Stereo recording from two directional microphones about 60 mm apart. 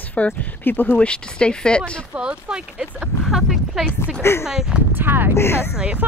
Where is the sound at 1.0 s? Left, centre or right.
Centre.